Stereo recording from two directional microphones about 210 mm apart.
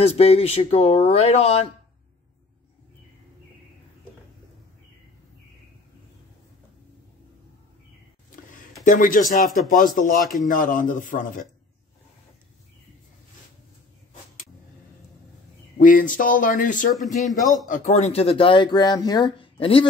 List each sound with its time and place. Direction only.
0.0 s speech: 30° left (ahead or behind)
8.8 s speech: 40° left (ahead or behind)
15.8 s speech: 40° left (ahead or behind)
17.2 s a man's voice: centre (ahead or behind)
17.6 s speech: 35° left (ahead or behind)